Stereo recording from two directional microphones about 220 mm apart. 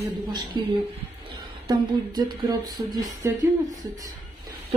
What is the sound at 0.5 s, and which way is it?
A woman's voice, 20° right (ahead or behind).